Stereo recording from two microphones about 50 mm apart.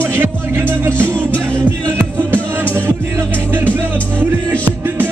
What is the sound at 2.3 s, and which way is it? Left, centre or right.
Music, right.